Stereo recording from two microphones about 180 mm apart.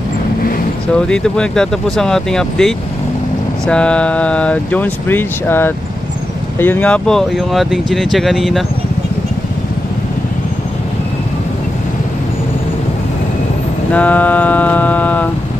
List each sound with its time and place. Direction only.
0.9 s speech: 5° left (ahead or behind)
13.9 s music: 10° left (ahead or behind)